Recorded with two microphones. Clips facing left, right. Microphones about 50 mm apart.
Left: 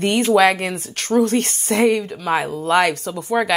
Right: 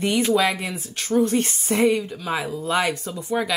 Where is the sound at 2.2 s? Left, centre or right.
Left.